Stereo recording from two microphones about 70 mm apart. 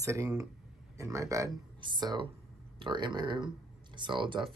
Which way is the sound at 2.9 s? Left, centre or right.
Right.